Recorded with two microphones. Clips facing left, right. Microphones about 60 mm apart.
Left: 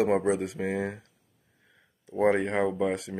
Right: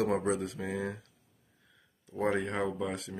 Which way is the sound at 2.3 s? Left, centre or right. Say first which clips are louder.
Left 6 dB; left.